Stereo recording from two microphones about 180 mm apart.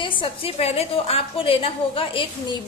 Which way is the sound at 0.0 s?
30° left (ahead or behind).